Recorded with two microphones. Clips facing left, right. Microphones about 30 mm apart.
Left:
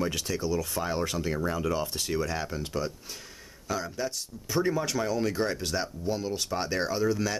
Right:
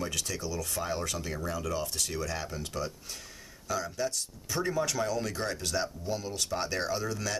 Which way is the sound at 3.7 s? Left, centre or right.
Centre.